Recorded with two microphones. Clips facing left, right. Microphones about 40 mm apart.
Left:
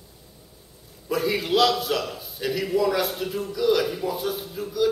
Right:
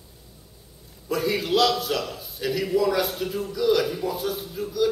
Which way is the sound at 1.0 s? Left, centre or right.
Centre.